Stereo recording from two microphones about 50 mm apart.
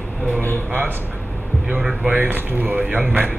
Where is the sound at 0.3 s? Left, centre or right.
Left.